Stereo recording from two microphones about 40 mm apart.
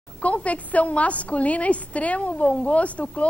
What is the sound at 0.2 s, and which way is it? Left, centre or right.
A woman's voice, left.